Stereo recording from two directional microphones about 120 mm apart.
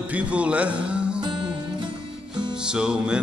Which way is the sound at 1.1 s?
40° right (ahead or behind).